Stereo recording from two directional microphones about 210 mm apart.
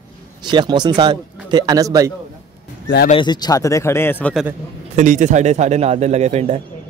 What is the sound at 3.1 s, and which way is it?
Speech, 20° left (ahead or behind).